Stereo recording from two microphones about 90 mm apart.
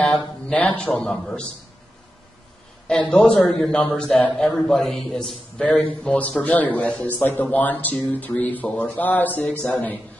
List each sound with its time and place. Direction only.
0.0 s speech: 15° left (ahead or behind)
1.0 s speech: 10° left (ahead or behind)
3.1 s a man's voice: 15° left (ahead or behind)